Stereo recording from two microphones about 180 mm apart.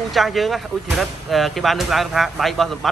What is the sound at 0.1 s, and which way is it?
Speech, centre (ahead or behind).